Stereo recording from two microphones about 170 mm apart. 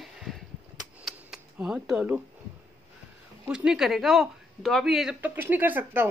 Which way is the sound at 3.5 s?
5° right (ahead or behind).